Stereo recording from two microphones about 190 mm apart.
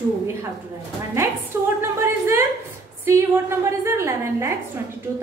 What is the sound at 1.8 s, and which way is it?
A woman's voice, 15° right (ahead or behind).